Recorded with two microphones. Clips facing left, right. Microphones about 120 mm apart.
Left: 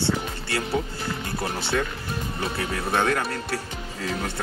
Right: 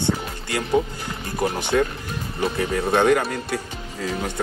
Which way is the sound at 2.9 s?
15° right (ahead or behind).